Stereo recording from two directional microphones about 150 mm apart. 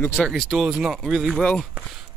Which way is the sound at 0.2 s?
Centre (ahead or behind).